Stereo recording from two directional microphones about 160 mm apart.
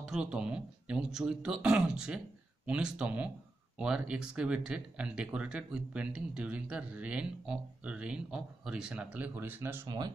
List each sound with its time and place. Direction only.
0.0 s speech: 5° right (ahead or behind)
9.8 s speech: 25° right (ahead or behind)